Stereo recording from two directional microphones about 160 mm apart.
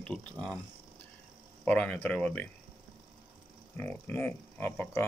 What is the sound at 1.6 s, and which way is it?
Speech, 10° left (ahead or behind).